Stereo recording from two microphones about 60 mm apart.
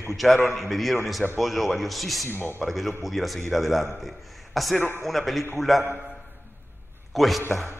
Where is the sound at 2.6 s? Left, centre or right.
Centre.